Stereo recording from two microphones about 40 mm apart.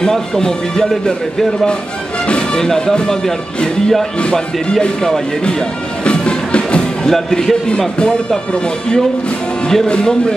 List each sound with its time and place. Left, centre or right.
0.0 s speech: centre
2.5 s speech: centre
6.0 s music: left
6.8 s speech: centre
9.8 s speech: left